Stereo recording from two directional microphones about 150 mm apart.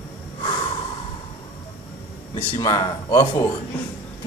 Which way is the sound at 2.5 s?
25° left (ahead or behind).